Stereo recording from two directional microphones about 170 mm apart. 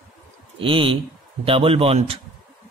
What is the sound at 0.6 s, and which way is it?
A man's voice, 30° right (ahead or behind).